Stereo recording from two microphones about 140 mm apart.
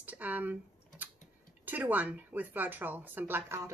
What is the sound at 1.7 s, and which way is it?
A woman's voice, 10° right (ahead or behind).